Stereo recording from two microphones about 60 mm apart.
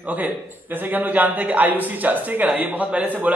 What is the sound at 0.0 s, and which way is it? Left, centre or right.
A man's voice, right.